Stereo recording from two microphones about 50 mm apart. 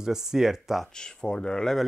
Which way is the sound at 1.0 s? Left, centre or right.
Centre.